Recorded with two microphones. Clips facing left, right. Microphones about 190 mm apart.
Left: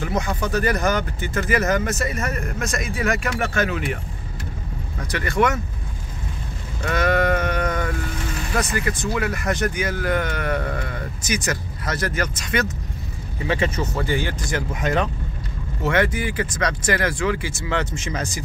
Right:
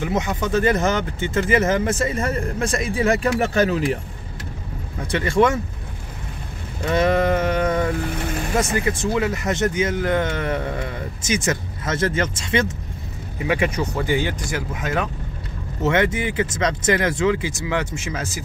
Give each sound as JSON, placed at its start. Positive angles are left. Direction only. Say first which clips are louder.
{"t": 0.0, "sound": "speech", "louder": "right 2 dB", "side_deg": -20}
{"t": 5.1, "sound": "speech", "louder": "right 3 dB", "side_deg": -25}
{"t": 6.9, "sound": "a sound", "louder": "right 2 dB", "side_deg": -25}
{"t": 8.5, "sound": "speech", "louder": "right 2 dB", "side_deg": -25}
{"t": 13.4, "sound": "speech", "louder": "right 1 dB", "side_deg": -15}
{"t": 15.8, "sound": "speech", "louder": "right 1 dB", "side_deg": -25}